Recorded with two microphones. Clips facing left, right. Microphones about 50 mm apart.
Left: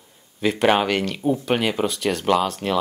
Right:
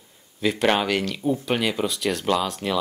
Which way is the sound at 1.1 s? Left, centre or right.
Centre.